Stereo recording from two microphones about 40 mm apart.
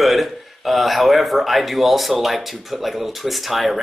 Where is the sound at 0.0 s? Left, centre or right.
Centre.